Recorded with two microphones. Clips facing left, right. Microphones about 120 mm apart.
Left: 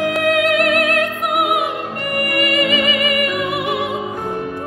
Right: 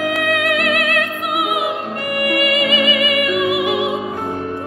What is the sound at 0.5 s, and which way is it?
Music, 45° left (ahead or behind).